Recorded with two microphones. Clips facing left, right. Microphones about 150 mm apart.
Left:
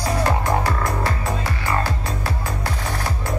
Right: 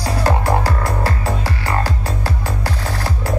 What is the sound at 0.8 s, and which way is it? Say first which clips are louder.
Music: right 2 dB; 30° right (ahead or behind).